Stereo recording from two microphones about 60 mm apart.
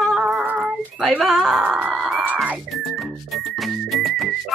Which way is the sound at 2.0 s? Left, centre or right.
Centre.